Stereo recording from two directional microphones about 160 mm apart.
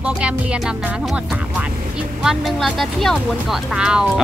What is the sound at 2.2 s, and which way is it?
Speech, centre (ahead or behind).